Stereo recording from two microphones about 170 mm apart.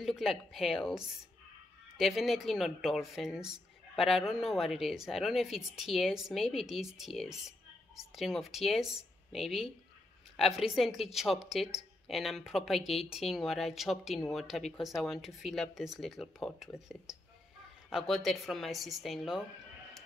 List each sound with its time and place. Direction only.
0.0 s a woman's voice: centre (ahead or behind)